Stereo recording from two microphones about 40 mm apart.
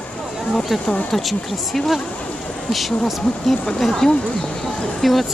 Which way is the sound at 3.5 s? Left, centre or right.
Centre.